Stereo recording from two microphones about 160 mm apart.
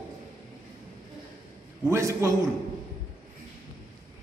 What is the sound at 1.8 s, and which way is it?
Speech, 15° right (ahead or behind).